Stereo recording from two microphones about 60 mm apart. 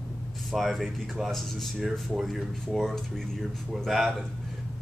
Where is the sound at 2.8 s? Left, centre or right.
Centre.